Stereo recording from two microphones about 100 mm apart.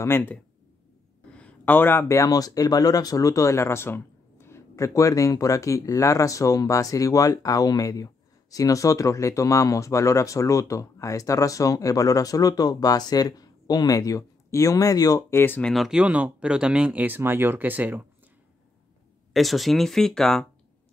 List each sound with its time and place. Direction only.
0.0 s speech: 25° left (ahead or behind)
15.6 s speech: centre (ahead or behind); by 18.0 s 15° right (ahead or behind)
19.3 s speech: centre (ahead or behind)